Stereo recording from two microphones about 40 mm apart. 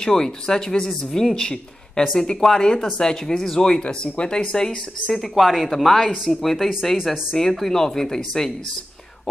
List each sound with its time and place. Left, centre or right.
0.0 s speech: centre
0.8 s a woman's voice: centre
1.3 s speech: centre
5.1 s a woman's voice: centre